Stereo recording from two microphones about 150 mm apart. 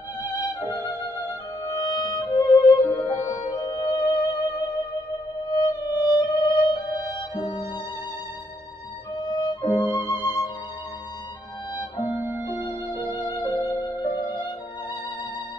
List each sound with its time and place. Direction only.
0.6 s music: 25° left (ahead or behind)
9.1 s music: 30° left (ahead or behind)
12.6 s music: 30° left (ahead or behind)